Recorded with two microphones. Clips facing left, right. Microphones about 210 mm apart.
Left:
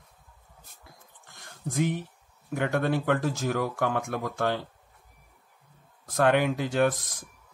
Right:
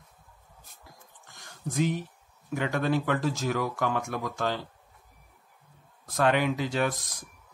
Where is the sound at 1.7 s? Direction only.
55° left (ahead or behind).